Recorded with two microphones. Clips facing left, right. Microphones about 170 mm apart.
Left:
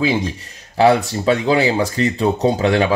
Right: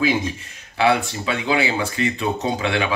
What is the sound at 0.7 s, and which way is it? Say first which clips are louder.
Speech: left 5 dB; 40° left (ahead or behind).